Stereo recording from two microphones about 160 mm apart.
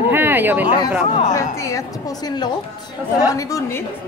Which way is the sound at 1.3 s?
20° left (ahead or behind).